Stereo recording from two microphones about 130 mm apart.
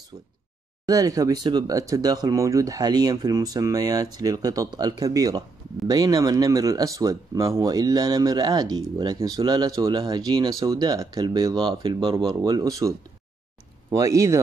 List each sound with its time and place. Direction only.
0.8 s speech: 25° right (ahead or behind)
12.4 s speech: 30° right (ahead or behind)